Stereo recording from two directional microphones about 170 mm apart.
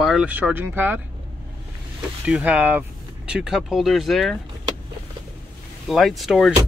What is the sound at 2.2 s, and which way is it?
Speech, 5° right (ahead or behind).